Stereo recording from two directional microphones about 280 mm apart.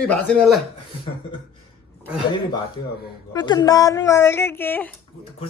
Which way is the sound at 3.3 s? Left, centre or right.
Centre.